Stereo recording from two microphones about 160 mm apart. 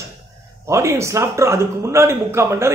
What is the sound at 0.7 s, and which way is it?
A man's voice, 15° right (ahead or behind).